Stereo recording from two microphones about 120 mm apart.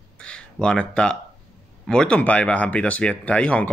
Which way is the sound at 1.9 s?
5° left (ahead or behind).